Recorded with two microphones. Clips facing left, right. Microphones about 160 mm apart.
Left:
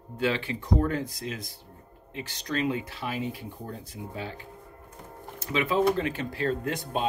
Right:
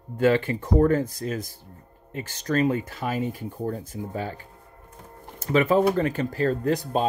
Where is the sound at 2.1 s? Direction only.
45° right (ahead or behind).